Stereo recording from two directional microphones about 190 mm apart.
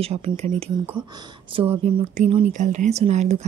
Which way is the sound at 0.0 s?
35° right (ahead or behind).